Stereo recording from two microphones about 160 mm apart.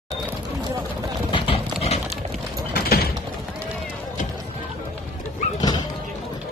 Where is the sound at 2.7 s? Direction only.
75° left (ahead or behind).